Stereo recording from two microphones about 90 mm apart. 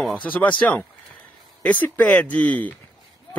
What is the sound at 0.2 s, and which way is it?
Speech, 15° left (ahead or behind).